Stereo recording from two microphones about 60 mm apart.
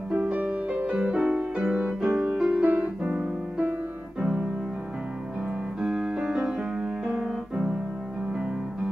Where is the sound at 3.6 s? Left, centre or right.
Right.